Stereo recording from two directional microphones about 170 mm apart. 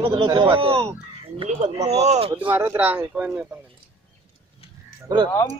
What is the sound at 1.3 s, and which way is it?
Speech, 45° right (ahead or behind).